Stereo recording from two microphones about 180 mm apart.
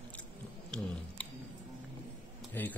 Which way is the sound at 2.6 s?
10° left (ahead or behind).